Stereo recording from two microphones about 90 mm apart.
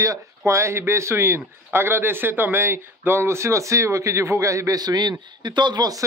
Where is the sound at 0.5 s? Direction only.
30° right (ahead or behind).